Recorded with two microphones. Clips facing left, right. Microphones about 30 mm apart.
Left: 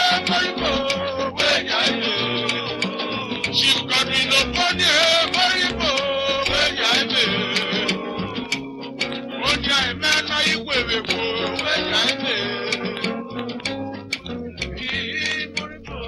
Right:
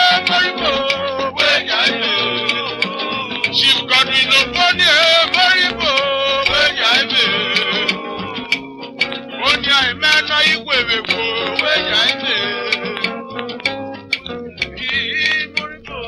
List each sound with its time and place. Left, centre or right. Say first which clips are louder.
0.0 s music: right 6 dB; right
9.5 s music: right 6 dB; right
14.9 s music: right 8 dB; right